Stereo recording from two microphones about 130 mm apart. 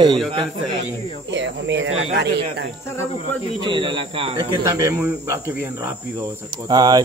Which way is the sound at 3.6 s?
40° right (ahead or behind).